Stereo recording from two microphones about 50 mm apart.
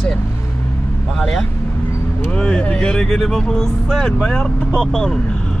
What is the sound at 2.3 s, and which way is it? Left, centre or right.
Speech, centre.